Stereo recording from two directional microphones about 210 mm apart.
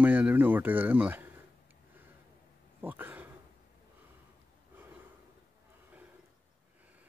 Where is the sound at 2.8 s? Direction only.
10° right (ahead or behind).